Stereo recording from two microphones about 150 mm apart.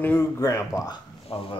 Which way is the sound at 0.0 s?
15° left (ahead or behind).